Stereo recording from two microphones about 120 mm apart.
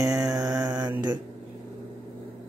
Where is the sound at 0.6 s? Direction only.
35° right (ahead or behind).